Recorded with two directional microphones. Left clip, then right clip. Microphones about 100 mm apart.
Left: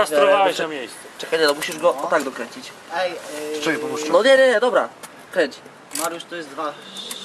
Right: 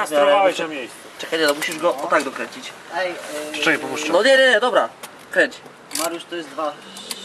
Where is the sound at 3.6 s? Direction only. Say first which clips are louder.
Right 4 dB; 5° right (ahead or behind).